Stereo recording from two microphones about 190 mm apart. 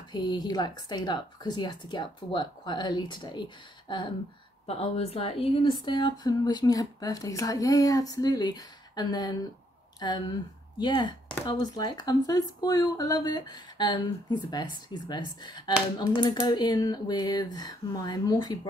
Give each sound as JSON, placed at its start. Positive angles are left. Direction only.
{"t": 0.1, "sound": "a woman's voice", "side_deg": 20}